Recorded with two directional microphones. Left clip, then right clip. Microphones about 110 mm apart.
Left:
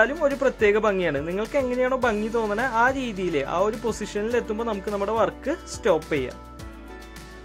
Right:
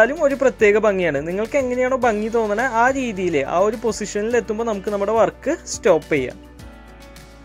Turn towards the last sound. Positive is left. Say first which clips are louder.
# right 6 dB
turn(degrees=-35)  # may be behind; listen again after turning